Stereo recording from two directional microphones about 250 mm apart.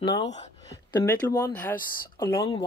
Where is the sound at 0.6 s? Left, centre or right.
Centre.